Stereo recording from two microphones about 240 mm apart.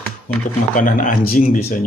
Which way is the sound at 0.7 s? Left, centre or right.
Left.